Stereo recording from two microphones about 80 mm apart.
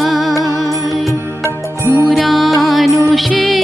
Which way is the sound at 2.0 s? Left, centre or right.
Centre.